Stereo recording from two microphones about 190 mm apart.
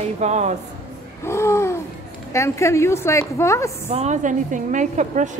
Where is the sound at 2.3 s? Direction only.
15° left (ahead or behind).